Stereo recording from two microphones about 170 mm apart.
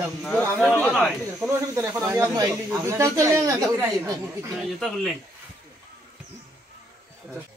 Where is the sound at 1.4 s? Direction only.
15° right (ahead or behind).